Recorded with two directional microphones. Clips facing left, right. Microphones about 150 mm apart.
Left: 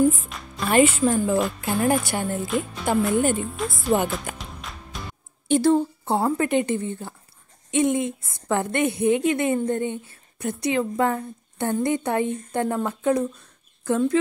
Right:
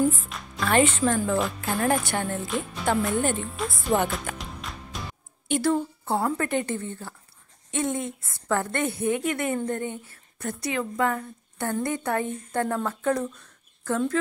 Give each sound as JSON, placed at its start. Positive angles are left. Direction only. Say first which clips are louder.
{"t": 0.6, "sound": "a woman's voice", "louder": "left 3 dB", "side_deg": 10}
{"t": 5.5, "sound": "a woman's voice", "louder": "left 5 dB", "side_deg": 25}